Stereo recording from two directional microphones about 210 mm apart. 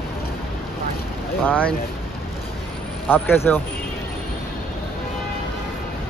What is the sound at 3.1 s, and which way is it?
Speech, 10° left (ahead or behind).